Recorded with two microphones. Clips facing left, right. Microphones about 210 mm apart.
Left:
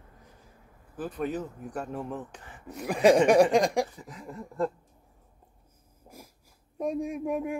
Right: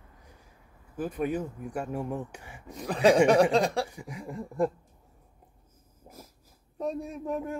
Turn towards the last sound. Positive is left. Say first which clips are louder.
# left 3 dB
turn(degrees=15)  # may be behind; listen again after turning